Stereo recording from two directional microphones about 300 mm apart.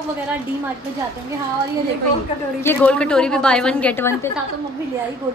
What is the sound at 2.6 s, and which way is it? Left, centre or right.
A woman's voice, centre.